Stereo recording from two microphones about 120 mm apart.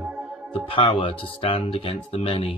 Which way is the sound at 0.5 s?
45° left (ahead or behind).